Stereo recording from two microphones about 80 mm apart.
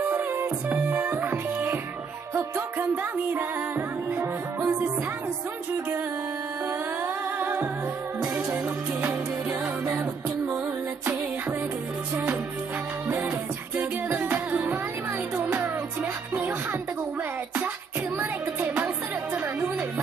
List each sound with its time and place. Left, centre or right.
0.0 s music: right
3.0 s music: right
7.3 s music: right
9.0 s music: right
13.7 s music: right
18.2 s music: right